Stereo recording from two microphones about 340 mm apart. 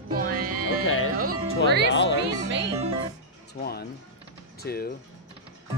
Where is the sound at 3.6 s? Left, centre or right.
Left.